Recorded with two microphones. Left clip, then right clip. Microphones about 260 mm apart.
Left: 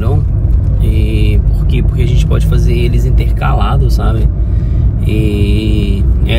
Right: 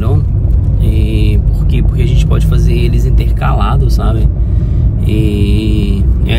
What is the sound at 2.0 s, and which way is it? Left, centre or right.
Speech, centre.